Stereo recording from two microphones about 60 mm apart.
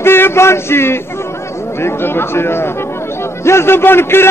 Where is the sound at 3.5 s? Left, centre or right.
Left.